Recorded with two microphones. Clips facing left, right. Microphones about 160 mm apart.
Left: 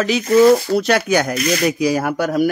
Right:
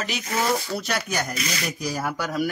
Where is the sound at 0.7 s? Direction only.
85° left; by 1.7 s 55° left (ahead or behind).